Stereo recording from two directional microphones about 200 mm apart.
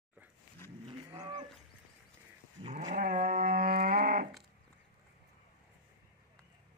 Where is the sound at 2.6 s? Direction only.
35° right (ahead or behind).